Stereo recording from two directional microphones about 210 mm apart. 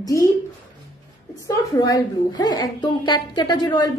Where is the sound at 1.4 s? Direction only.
15° left (ahead or behind).